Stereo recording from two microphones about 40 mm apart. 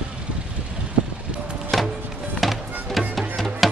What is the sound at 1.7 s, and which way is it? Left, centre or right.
Music, centre.